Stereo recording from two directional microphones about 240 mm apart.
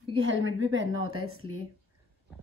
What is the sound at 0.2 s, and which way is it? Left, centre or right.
A woman's voice, right.